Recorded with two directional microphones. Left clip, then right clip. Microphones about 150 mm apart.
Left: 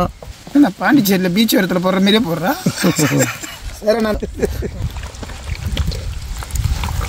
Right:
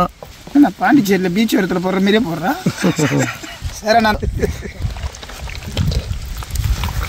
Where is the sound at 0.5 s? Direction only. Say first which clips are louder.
Right 1 dB; 60° left (ahead or behind).